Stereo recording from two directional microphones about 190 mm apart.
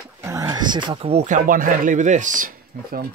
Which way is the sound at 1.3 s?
45° right (ahead or behind).